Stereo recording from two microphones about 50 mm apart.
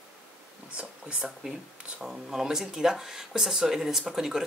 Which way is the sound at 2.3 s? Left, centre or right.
Centre.